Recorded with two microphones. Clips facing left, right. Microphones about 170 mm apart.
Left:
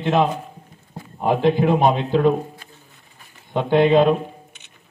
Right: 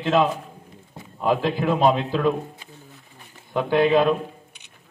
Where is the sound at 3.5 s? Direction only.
25° left (ahead or behind).